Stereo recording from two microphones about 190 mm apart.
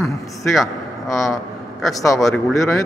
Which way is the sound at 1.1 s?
Centre (ahead or behind).